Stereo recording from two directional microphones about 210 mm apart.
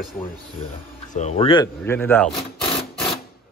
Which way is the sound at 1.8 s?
10° left (ahead or behind).